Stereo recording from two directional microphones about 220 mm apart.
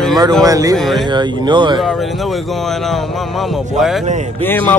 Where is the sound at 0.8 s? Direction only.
Centre (ahead or behind).